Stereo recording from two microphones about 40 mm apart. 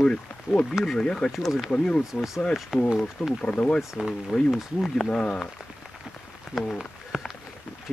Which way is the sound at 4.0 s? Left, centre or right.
Right.